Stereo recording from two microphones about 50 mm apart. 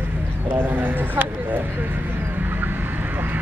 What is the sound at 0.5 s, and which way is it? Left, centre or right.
Speech, right.